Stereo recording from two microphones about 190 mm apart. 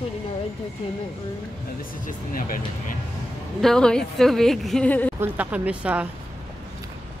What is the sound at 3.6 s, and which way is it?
A woman's voice, 5° left (ahead or behind).